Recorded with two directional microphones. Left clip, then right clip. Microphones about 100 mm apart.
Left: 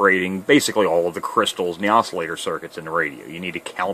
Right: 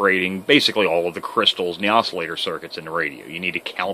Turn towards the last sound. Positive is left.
turn(degrees=25)  # may be behind; listen again after turning